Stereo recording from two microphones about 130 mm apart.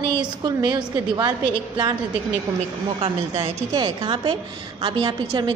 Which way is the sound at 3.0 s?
45° right (ahead or behind).